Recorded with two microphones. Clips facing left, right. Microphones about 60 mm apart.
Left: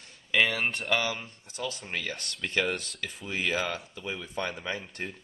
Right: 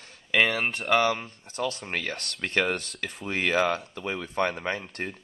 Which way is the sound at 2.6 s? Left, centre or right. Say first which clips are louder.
Right 3 dB; centre.